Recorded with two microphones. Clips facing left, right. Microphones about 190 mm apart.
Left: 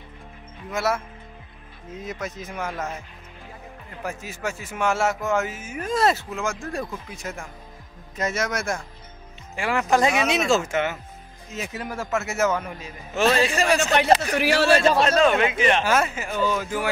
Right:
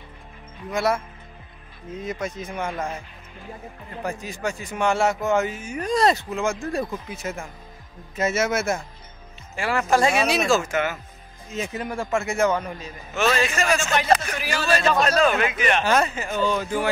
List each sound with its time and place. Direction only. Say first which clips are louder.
0.7 s a man's voice: right 2 dB; 5° left (ahead or behind)
2.0 s a man's voice: right 3 dB; centre (ahead or behind)
4.0 s a man's voice: right 2 dB; 5° left (ahead or behind)
9.6 s a man's voice: even; 15° left (ahead or behind)
11.5 s a man's voice: right 3 dB; 5° left (ahead or behind)
13.4 s a man's voice: left 2 dB; 35° left (ahead or behind)
14.3 s speech: left 7 dB; 70° left (ahead or behind)
14.7 s a man's voice: right 1 dB; 30° left (ahead or behind)
15.8 s speech: right 1 dB; 5° left (ahead or behind)